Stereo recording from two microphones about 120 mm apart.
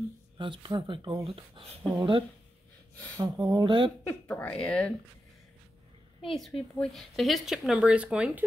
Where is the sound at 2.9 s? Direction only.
10° left (ahead or behind).